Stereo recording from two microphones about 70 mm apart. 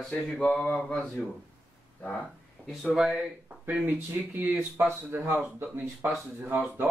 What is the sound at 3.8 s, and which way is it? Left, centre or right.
Speech, right.